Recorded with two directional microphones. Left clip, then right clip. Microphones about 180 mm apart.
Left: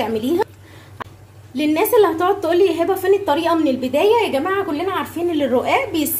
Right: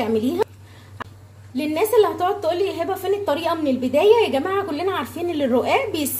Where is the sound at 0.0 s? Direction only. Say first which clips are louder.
Left 2 dB; 5° right (ahead or behind).